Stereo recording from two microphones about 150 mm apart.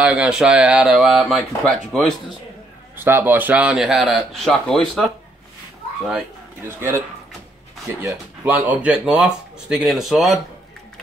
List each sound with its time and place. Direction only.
0.0 s speech: 10° right (ahead or behind)
3.0 s speech: 15° right (ahead or behind); by 5.1 s centre (ahead or behind)
6.6 s speech: 15° right (ahead or behind)
8.0 s speech: 10° right (ahead or behind)